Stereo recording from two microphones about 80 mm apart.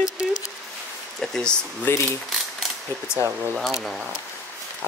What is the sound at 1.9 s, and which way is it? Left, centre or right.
Speech, left.